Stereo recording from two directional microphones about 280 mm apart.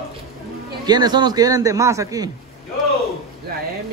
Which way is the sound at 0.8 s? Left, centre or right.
Centre.